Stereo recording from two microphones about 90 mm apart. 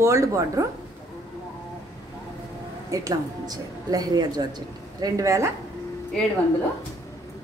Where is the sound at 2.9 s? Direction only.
40° right (ahead or behind).